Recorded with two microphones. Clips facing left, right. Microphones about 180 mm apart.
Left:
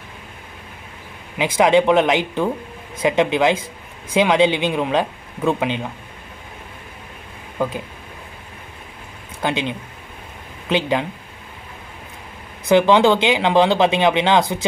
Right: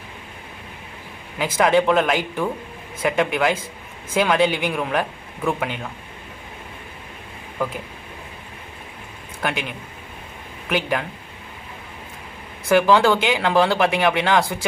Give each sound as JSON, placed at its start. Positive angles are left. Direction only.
{"t": 1.4, "sound": "speech", "side_deg": 20}
{"t": 7.5, "sound": "speech", "side_deg": 15}
{"t": 9.4, "sound": "speech", "side_deg": 20}
{"t": 12.6, "sound": "speech", "side_deg": 20}